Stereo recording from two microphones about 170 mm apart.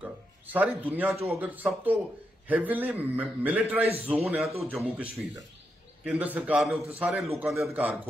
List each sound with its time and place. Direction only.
0.0 s a man's voice: 10° right (ahead or behind)
3.8 s a man's voice: 35° right (ahead or behind)
4.2 s a man's voice: centre (ahead or behind)
4.6 s a man's voice: 10° right (ahead or behind)